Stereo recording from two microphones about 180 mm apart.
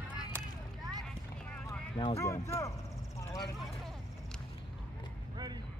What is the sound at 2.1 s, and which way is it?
Speech, 15° left (ahead or behind).